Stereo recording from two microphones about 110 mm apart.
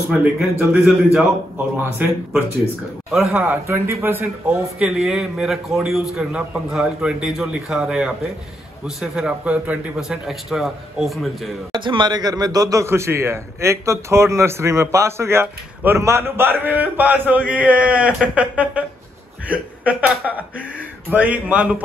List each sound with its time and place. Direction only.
0.4 s a man's voice: 5° right (ahead or behind)
1.8 s a man's voice: 20° right (ahead or behind)
3.1 s a man's voice: 5° right (ahead or behind)
3.4 s a man's voice: 25° right (ahead or behind)
4.7 s a man's voice: 5° right (ahead or behind)
11.7 s a man's voice: 45° right (ahead or behind); by 21.8 s 10° right (ahead or behind)